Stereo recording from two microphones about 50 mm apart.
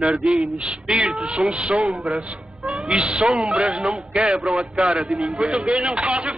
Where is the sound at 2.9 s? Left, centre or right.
Right.